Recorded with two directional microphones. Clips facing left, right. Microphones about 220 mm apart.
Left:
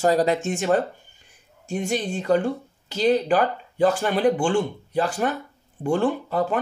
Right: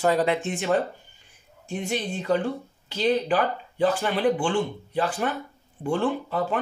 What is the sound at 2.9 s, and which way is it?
Speech, 45° left (ahead or behind).